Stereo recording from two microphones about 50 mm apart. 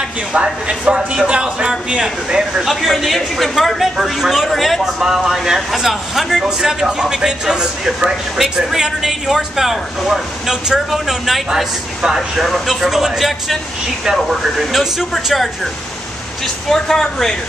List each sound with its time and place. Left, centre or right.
0.3 s a man's voice: centre
2.7 s a man's voice: centre